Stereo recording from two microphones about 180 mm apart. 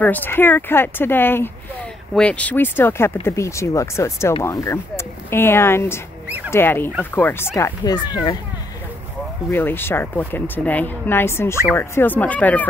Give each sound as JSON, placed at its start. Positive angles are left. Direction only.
{"t": 0.0, "sound": "speech", "side_deg": 10}
{"t": 6.2, "sound": "a sound", "side_deg": -10}
{"t": 6.5, "sound": "speech", "side_deg": 10}
{"t": 9.5, "sound": "speech", "side_deg": 10}